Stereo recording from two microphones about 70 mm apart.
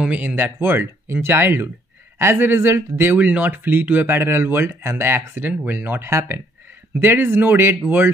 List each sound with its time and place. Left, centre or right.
0.0 s speech: centre
6.0 s speech: right
7.0 s speech: right